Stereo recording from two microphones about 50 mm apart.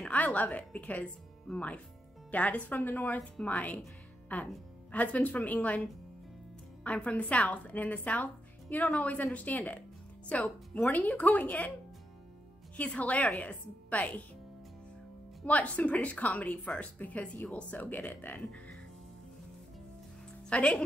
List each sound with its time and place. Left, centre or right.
0.1 s speech: left
2.3 s speech: left
6.8 s a woman's voice: left
12.7 s a woman's voice: left
15.4 s a woman's voice: left
20.4 s a woman's voice: left